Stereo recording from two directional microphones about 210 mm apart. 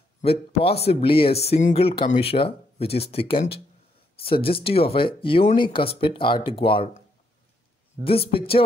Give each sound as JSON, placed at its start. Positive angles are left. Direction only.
{"t": 0.2, "sound": "speech", "side_deg": 30}
{"t": 8.0, "sound": "speech", "side_deg": 25}